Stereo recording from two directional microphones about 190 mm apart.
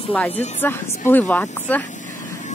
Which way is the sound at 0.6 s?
10° left (ahead or behind).